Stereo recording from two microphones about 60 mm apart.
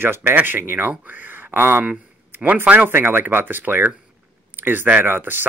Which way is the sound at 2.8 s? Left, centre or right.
Right.